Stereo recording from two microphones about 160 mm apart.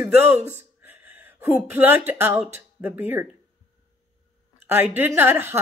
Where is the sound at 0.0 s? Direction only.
15° right (ahead or behind).